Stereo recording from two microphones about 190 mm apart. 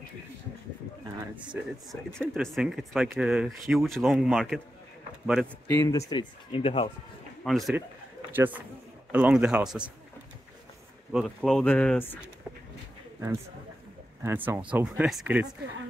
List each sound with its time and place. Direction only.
1.5 s speech: centre (ahead or behind)
5.8 s speech: 15° left (ahead or behind)
7.4 s speech: centre (ahead or behind)
11.1 s speech: centre (ahead or behind)
14.2 s speech: 10° right (ahead or behind)